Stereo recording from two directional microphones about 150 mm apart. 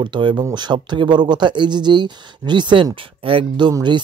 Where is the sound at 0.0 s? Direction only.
30° right (ahead or behind).